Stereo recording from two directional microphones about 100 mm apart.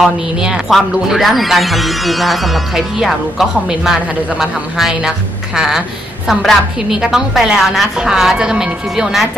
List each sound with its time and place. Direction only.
0.0 s speech: 5° right (ahead or behind)